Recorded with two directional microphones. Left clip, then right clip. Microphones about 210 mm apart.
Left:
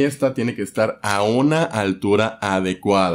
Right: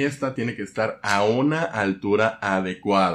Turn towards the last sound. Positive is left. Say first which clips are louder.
# left 3 dB
turn(degrees=55)  # may be behind; listen again after turning